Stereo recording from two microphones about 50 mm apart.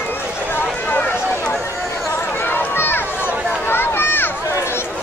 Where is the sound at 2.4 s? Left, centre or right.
Left.